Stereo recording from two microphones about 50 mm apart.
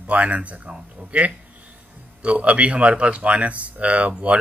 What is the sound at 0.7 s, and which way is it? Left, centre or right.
Speech, centre.